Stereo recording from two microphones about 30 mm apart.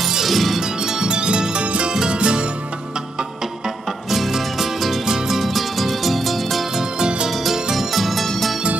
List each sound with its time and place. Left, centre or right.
0.2 s music: centre
0.6 s music: centre
1.1 s music: right
4.1 s music: centre
5.0 s music: centre
5.4 s music: centre
6.8 s music: right
7.7 s music: centre